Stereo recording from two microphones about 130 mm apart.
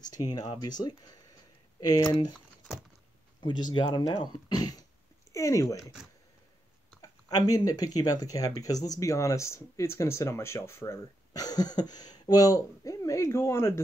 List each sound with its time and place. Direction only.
0.0 s speech: 30° left (ahead or behind)
3.3 s speech: 35° left (ahead or behind)
5.3 s speech: 25° left (ahead or behind)
7.0 s speech: 30° left (ahead or behind)